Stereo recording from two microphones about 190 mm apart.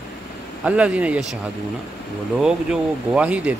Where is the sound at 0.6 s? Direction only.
5° right (ahead or behind).